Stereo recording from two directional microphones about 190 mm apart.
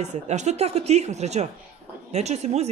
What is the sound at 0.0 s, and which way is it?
Speech, 35° right (ahead or behind).